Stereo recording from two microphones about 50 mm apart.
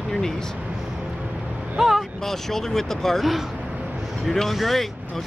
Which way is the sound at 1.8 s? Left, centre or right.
Centre.